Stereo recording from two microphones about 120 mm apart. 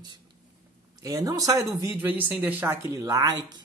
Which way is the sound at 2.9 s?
25° right (ahead or behind).